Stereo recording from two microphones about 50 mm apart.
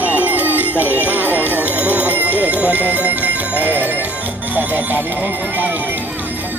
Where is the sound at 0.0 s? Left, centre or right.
Right.